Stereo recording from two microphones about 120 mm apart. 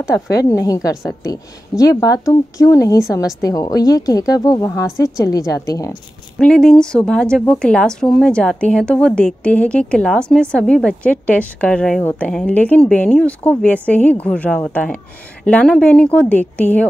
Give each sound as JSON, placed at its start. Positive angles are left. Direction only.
{"t": 0.1, "sound": "a woman's voice", "side_deg": 30}
{"t": 6.3, "sound": "a woman's voice", "side_deg": 5}